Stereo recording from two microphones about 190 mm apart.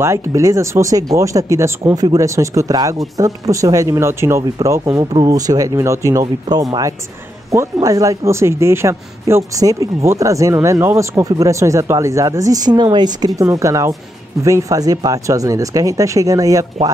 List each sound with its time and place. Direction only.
0.0 s speech: 15° right (ahead or behind)